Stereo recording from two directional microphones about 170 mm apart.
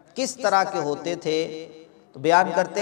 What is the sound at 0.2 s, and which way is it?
Speech, 10° left (ahead or behind).